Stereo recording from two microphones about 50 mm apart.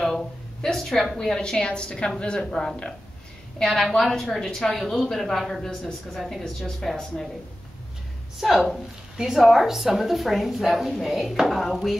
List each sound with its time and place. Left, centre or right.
0.0 s a woman's voice: centre
3.5 s a woman's voice: centre
8.4 s a woman's voice: centre
9.1 s a woman's voice: centre